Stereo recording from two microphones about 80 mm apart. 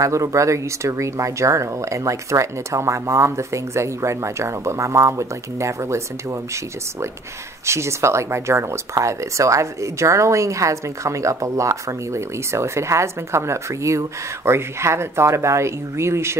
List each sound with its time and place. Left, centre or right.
0.0 s speech: right
7.6 s speech: right